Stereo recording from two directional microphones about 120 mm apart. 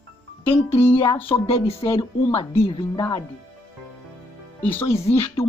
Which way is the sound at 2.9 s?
30° left (ahead or behind).